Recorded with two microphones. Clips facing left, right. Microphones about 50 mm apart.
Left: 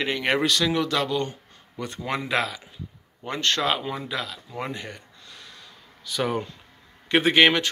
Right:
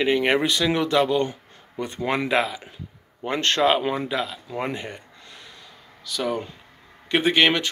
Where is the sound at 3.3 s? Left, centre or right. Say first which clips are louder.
Right 4 dB; right.